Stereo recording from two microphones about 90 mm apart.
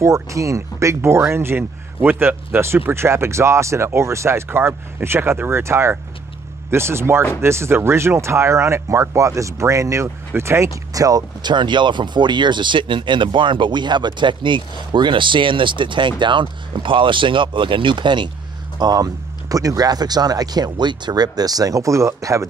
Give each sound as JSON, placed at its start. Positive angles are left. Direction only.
{"t": 0.0, "sound": "speech", "side_deg": -35}
{"t": 18.8, "sound": "speech", "side_deg": -45}